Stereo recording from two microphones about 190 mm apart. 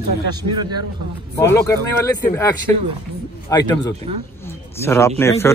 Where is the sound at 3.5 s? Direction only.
20° left (ahead or behind).